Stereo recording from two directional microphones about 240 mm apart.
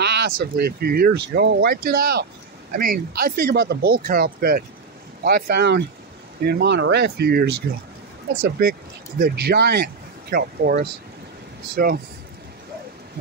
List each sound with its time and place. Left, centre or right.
0.0 s speech: right